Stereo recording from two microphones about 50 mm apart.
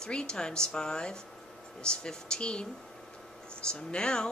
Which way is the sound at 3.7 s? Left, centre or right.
Centre.